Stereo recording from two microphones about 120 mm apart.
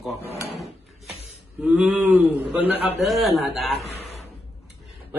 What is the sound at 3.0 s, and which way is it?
Speech, centre (ahead or behind).